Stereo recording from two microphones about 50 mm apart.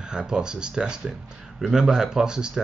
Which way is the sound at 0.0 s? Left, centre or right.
Centre.